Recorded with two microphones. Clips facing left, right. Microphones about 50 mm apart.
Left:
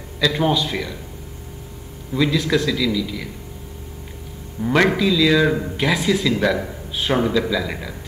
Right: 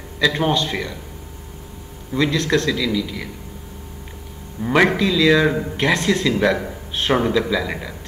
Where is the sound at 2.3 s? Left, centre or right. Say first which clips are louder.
Even; centre.